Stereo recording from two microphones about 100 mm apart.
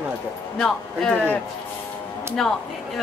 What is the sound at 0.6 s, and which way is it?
A man's voice, 5° left (ahead or behind).